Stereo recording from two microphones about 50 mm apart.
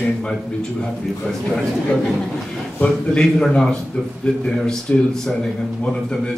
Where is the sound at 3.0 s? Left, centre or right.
Centre.